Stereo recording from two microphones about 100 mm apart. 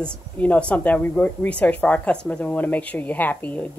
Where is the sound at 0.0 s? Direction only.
10° left (ahead or behind).